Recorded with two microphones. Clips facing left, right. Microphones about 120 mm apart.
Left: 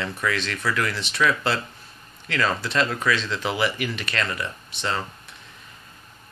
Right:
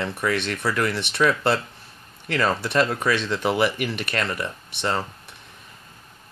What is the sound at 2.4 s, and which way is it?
Speech, 50° right (ahead or behind).